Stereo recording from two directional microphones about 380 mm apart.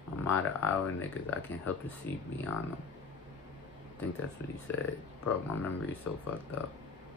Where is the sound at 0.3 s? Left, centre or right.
Centre.